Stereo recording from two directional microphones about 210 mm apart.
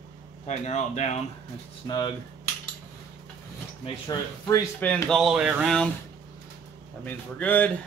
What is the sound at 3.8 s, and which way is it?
Speech, 20° left (ahead or behind).